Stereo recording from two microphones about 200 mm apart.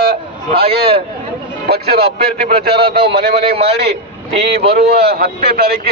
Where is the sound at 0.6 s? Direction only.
50° right (ahead or behind).